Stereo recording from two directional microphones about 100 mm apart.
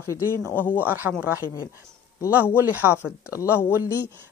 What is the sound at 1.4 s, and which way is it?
Speech, 30° left (ahead or behind).